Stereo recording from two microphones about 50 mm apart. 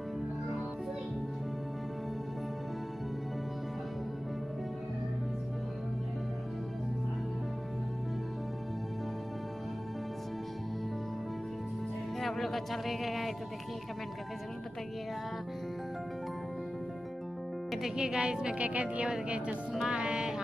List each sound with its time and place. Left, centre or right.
12.2 s speech: centre
17.9 s a woman's voice: centre
19.9 s music: centre